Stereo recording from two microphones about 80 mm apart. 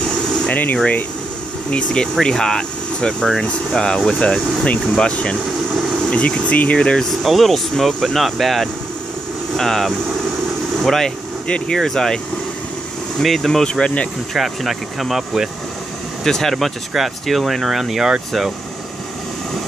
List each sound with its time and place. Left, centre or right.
0.5 s speech: left
5.7 s vehicle: centre
6.1 s speech: centre
7.2 s speech: centre
13.2 s speech: centre
14.3 s speech: centre